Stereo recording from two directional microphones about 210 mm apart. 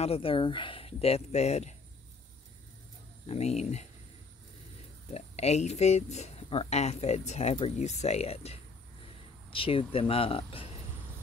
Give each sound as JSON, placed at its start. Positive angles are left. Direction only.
{"t": 0.0, "sound": "speech", "side_deg": 25}
{"t": 3.3, "sound": "speech", "side_deg": 30}
{"t": 5.1, "sound": "speech", "side_deg": 30}